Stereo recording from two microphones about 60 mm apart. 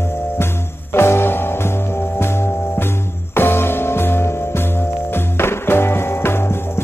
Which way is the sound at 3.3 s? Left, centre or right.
Left.